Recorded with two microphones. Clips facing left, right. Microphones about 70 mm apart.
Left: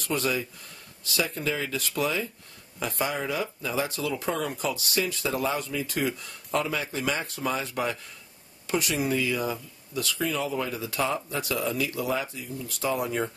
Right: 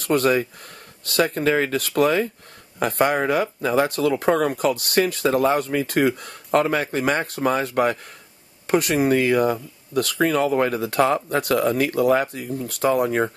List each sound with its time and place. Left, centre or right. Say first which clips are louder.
0.0 s speech: right 9 dB; right